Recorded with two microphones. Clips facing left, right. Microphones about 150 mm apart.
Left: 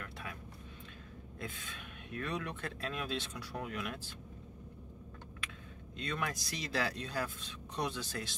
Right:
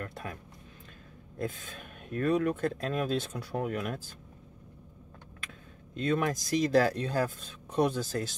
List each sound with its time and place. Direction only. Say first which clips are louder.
0.0 s speech: right 6 dB; 45° right (ahead or behind)
1.4 s speech: right 10 dB; 45° right (ahead or behind)
5.9 s speech: right 10 dB; 45° right (ahead or behind)